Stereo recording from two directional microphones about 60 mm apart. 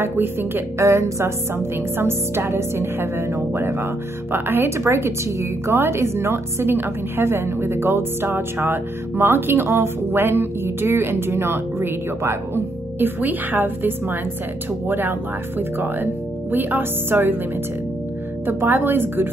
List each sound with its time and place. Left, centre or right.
0.0 s speech: right
0.7 s music: right
2.0 s speech: right
13.0 s speech: right
18.5 s speech: right